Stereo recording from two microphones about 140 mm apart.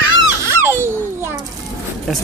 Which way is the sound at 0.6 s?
15° right (ahead or behind).